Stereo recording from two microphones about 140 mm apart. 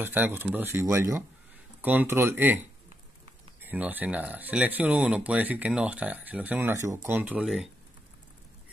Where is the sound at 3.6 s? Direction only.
10° right (ahead or behind).